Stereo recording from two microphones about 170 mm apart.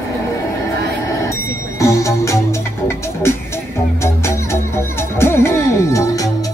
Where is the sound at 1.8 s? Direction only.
15° left (ahead or behind).